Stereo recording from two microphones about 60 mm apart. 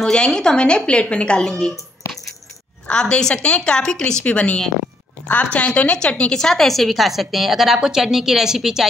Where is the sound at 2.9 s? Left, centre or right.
Centre.